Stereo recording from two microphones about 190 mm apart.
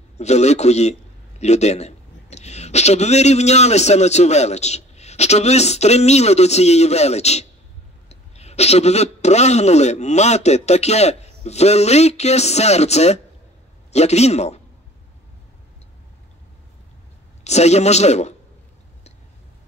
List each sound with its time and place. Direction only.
0.2 s speech: 35° left (ahead or behind)
17.4 s speech: 35° left (ahead or behind)